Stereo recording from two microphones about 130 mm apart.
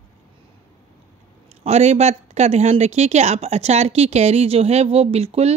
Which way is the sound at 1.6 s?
55° right (ahead or behind).